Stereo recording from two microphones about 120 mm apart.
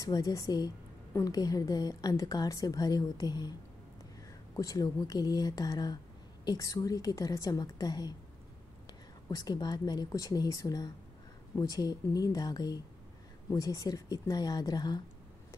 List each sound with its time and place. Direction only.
0.0 s a woman's voice: 30° left (ahead or behind)
4.6 s a woman's voice: 30° left (ahead or behind)